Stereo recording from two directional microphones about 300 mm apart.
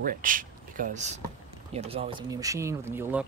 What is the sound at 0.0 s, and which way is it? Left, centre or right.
Speech, right.